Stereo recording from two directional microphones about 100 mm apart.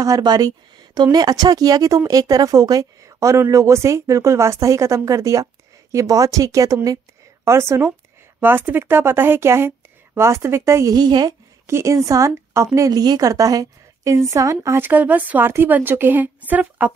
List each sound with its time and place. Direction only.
0.0 s a woman's voice: 40° right (ahead or behind)
11.0 s a woman's voice: 45° right (ahead or behind)
11.6 s a woman's voice: 30° right (ahead or behind)